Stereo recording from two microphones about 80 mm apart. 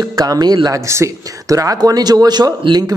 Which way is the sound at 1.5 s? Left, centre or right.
Right.